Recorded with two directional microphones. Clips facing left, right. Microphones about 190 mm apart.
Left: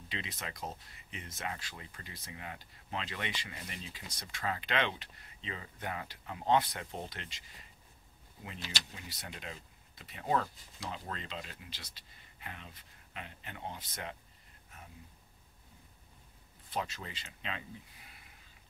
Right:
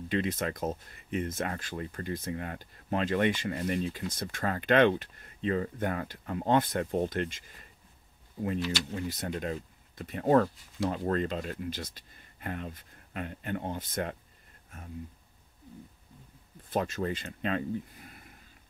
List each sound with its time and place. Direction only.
0.1 s speech: 50° right (ahead or behind)
8.9 s speech: 50° right (ahead or behind)
16.7 s speech: 50° right (ahead or behind)